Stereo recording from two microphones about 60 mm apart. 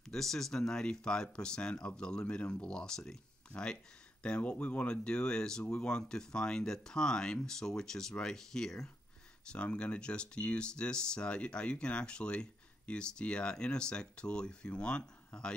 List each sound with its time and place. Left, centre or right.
0.1 s speech: centre